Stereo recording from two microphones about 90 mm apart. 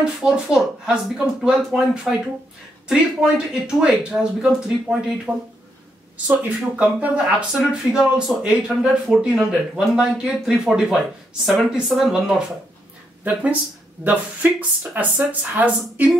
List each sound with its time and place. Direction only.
0.0 s speech: 10° right (ahead or behind)